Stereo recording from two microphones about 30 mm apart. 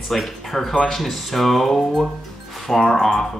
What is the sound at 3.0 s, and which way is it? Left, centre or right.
Speech, centre.